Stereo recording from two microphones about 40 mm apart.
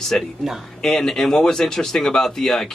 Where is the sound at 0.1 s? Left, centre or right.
Left.